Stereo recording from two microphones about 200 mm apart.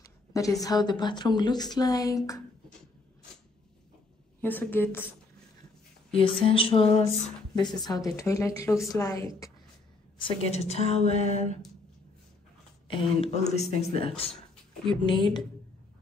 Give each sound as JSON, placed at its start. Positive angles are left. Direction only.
{"t": 0.0, "sound": "speech", "side_deg": 15}
{"t": 4.4, "sound": "a woman's voice", "side_deg": 10}
{"t": 6.1, "sound": "a woman's voice", "side_deg": 25}
{"t": 10.1, "sound": "a woman's voice", "side_deg": 30}
{"t": 12.8, "sound": "speech", "side_deg": 25}